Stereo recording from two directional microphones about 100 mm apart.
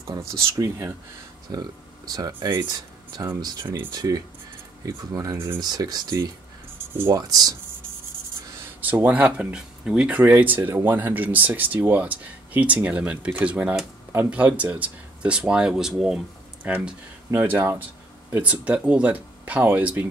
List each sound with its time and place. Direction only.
0.0 s speech: 35° right (ahead or behind)
1.5 s speech: 40° right (ahead or behind)
3.9 s speech: 40° right (ahead or behind)
6.9 s speech: 25° right (ahead or behind)
7.2 s speech: 40° right (ahead or behind)
8.8 s speech: 15° right (ahead or behind)
17.3 s speech: 25° right (ahead or behind)